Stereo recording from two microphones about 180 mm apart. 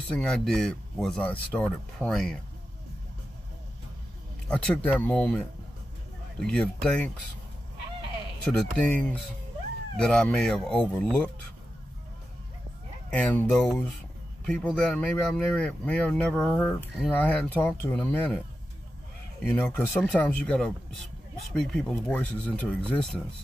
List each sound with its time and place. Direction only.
0.1 s speech: 5° left (ahead or behind)
4.5 s speech: 5° left (ahead or behind)
6.4 s speech: 5° left (ahead or behind)
8.5 s speech: 10° left (ahead or behind)
13.1 s speech: 5° left (ahead or behind)
19.4 s speech: 10° left (ahead or behind)